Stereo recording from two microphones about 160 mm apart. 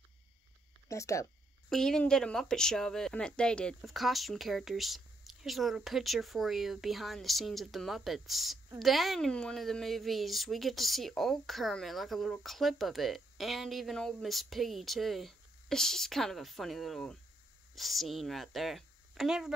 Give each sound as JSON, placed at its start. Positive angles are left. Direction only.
{"t": 0.8, "sound": "speech", "side_deg": 20}
{"t": 1.7, "sound": "a woman's voice", "side_deg": 5}